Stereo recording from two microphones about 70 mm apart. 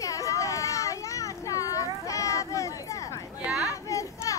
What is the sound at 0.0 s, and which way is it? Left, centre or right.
Children playing, left.